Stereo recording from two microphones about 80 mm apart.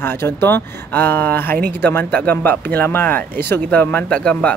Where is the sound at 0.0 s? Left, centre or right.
Left.